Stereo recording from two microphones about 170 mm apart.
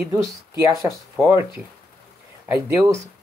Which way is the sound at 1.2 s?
15° right (ahead or behind).